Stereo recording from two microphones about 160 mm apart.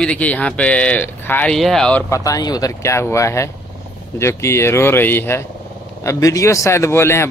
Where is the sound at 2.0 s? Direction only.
20° left (ahead or behind).